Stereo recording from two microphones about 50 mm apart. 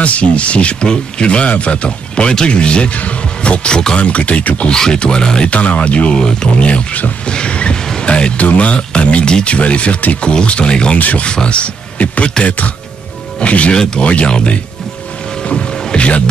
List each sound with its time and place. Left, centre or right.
0.0 s speech: left
5.5 s speech: left
7.3 s vehicle: left
8.1 s speech: left
11.0 s speech: left
11.2 s speech: left
15.4 s music: centre